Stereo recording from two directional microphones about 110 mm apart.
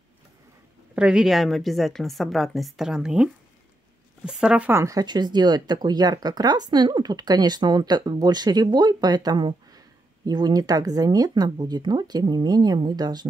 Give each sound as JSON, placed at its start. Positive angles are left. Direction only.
{"t": 0.9, "sound": "a woman's voice", "side_deg": -10}
{"t": 4.3, "sound": "speech", "side_deg": -10}
{"t": 4.8, "sound": "speech", "side_deg": -35}